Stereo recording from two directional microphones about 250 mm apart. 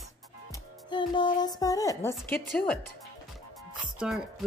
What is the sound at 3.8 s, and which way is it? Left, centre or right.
Music, centre.